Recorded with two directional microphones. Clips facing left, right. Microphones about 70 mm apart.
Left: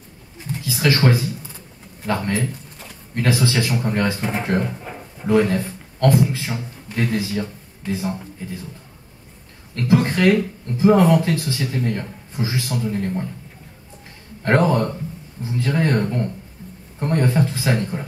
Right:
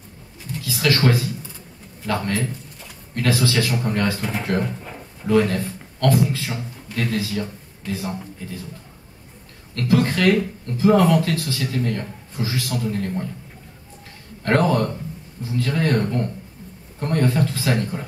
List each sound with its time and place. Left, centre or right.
0.5 s a sound: left
2.0 s a man's voice: left
9.8 s speech: left
14.4 s speech: left